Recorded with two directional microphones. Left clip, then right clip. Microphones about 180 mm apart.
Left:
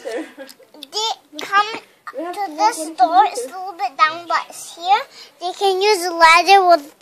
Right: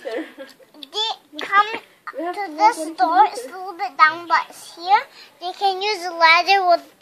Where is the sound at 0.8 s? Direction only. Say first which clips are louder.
Left 2 dB; 75° left (ahead or behind).